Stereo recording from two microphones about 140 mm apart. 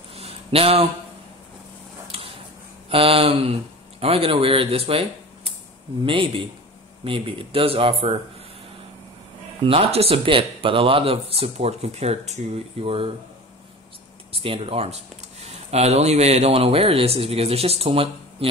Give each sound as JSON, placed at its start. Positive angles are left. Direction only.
{"t": 0.1, "sound": "a sound", "side_deg": -45}
{"t": 2.9, "sound": "speech", "side_deg": -40}
{"t": 9.7, "sound": "speech", "side_deg": -45}
{"t": 14.4, "sound": "speech", "side_deg": -45}